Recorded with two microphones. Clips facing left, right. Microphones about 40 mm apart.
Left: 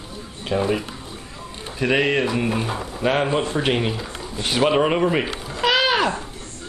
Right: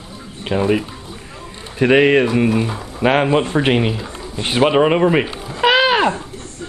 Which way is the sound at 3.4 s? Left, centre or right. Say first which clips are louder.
Right 5 dB; right.